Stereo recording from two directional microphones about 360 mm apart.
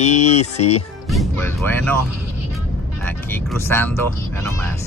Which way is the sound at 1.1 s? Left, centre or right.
Centre.